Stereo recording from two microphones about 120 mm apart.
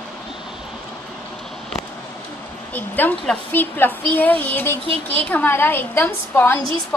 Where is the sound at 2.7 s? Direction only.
15° left (ahead or behind).